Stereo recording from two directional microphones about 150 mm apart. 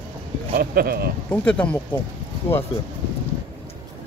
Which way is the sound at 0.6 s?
85° right.